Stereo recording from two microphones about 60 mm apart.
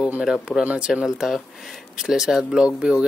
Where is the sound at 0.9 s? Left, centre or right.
Centre.